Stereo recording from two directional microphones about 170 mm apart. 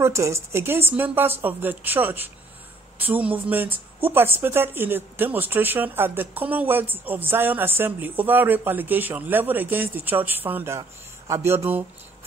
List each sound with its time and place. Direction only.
0.0 s speech: 15° right (ahead or behind)